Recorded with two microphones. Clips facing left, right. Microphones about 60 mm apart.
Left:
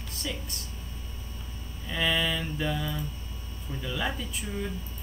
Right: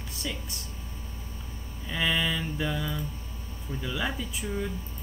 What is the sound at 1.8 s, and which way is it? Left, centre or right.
Mantra, centre.